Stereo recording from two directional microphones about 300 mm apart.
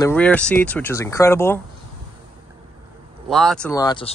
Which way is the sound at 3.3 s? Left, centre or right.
Centre.